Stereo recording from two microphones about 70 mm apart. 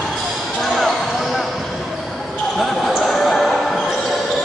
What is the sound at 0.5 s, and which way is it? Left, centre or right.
Basketball bounce, centre.